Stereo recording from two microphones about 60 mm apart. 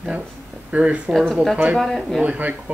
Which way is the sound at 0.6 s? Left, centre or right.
Right.